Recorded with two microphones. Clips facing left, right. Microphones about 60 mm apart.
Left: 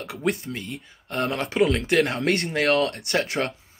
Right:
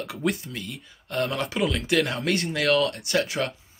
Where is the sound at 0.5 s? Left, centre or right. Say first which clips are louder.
Left 2 dB; left.